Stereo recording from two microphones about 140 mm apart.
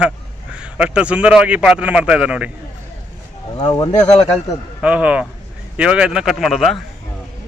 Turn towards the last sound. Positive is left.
turn(degrees=0)  # may be behind; listen again after turning